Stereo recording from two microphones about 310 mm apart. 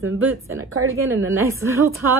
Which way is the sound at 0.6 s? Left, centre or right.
Right.